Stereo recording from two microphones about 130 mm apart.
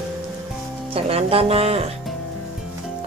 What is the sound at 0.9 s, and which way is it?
Music, 50° right (ahead or behind).